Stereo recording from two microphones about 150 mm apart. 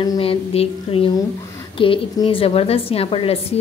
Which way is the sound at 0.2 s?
40° left (ahead or behind).